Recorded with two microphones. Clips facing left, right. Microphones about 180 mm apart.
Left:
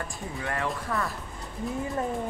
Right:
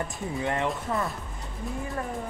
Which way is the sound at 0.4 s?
20° right (ahead or behind).